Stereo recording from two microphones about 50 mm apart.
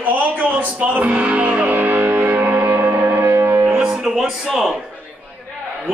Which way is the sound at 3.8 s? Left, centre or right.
Centre.